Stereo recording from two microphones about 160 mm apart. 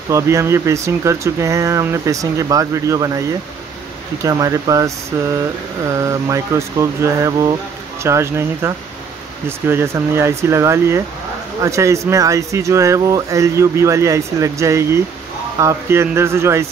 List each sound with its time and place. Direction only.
0.1 s speech: 20° right (ahead or behind)